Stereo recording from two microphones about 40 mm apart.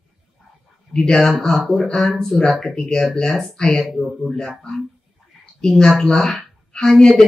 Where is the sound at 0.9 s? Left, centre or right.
Centre.